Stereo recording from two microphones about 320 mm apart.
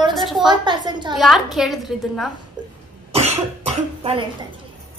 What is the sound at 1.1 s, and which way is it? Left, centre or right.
A woman's voice, centre.